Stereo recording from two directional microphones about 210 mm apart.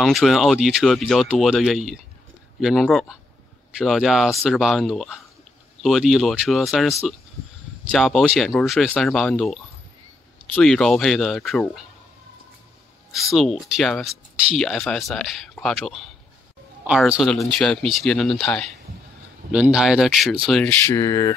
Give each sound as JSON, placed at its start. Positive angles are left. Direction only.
{"t": 0.0, "sound": "speech", "side_deg": 0}
{"t": 7.9, "sound": "speech", "side_deg": 0}
{"t": 13.3, "sound": "speech", "side_deg": 0}
{"t": 20.8, "sound": "a sound", "side_deg": 15}